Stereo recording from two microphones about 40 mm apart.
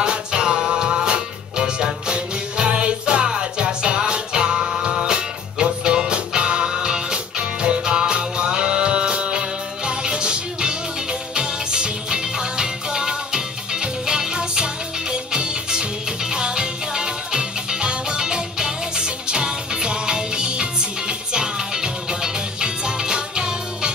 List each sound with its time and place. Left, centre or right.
0.0 s music: right